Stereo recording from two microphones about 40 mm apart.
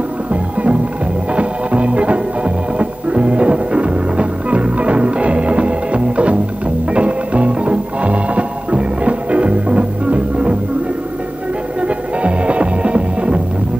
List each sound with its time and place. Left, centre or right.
0.3 s music: right
11.9 s music: right